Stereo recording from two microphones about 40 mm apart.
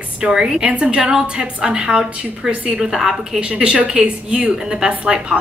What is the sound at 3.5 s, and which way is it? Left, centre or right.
A woman's voice, right.